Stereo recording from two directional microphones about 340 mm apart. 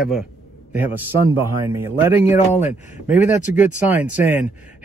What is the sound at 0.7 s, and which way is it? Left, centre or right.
Speech, centre.